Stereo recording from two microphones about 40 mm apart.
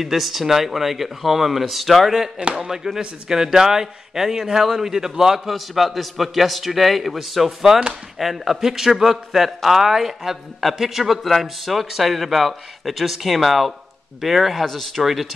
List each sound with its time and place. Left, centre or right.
0.0 s speech: centre
2.3 s a man's voice: centre
7.4 s a man's voice: centre